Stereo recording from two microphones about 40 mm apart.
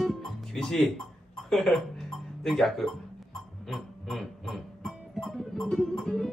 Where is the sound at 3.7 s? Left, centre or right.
Centre.